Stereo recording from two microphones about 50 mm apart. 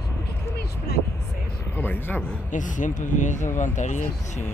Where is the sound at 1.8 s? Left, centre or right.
Left.